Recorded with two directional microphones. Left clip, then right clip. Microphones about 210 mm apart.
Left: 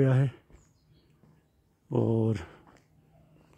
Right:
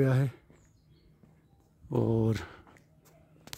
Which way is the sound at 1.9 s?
Centre (ahead or behind).